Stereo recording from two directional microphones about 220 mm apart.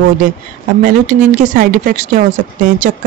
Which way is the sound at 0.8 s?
35° right (ahead or behind).